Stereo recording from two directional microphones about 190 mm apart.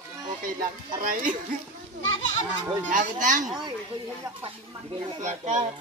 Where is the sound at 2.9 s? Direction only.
45° right (ahead or behind).